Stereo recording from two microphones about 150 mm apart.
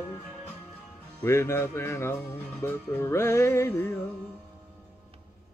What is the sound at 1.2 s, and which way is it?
Music, 15° left (ahead or behind).